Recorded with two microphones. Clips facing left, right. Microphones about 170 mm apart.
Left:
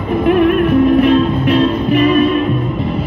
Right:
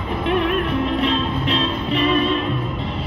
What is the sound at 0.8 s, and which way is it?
Music, 50° left (ahead or behind).